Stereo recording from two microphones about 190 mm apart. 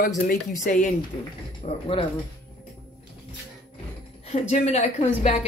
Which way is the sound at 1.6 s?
30° left (ahead or behind).